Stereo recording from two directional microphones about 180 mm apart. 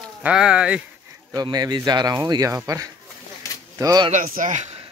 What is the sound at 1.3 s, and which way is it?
Speech, 20° right (ahead or behind).